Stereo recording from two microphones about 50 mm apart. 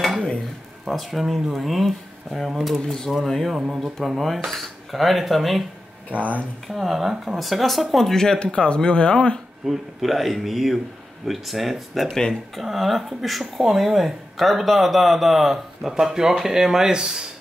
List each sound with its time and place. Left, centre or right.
0.8 s speech: centre
2.8 s speech: centre
3.3 s speech: centre
6.1 s speech: right
6.7 s speech: centre
9.7 s speech: centre
12.1 s speech: centre
12.5 s speech: centre